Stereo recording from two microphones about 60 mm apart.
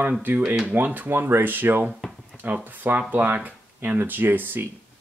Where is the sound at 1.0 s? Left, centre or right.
Right.